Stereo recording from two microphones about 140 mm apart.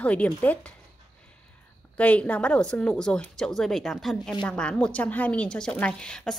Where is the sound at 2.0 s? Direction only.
10° left (ahead or behind).